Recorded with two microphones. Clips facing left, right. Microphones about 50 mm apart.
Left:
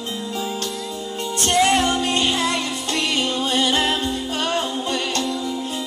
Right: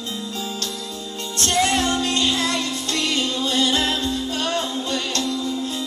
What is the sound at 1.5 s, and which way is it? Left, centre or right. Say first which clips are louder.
Music: left 3 dB; centre.